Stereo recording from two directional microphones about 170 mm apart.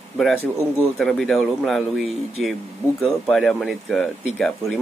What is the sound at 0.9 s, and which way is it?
Speech, centre (ahead or behind).